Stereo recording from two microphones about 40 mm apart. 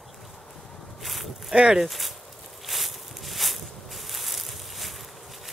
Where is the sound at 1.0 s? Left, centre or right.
Centre.